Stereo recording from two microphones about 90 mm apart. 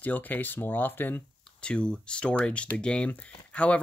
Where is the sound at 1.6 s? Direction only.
10° left (ahead or behind).